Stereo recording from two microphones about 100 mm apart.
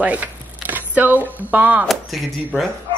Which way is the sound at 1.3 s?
15° right (ahead or behind).